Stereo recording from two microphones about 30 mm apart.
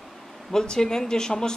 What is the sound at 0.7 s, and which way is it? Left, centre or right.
Speech, left.